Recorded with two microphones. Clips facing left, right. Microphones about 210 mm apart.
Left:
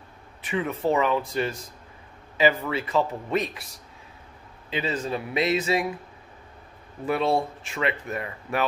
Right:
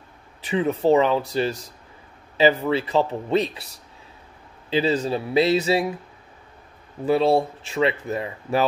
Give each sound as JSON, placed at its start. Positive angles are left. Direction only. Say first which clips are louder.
{"t": 0.5, "sound": "speech", "louder": "right 6 dB", "side_deg": -30}
{"t": 4.6, "sound": "speech", "louder": "right 7 dB", "side_deg": -30}
{"t": 7.1, "sound": "speech", "louder": "right 5 dB", "side_deg": -30}